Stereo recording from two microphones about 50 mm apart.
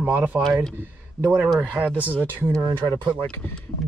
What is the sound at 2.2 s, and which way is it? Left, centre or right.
Speech, right.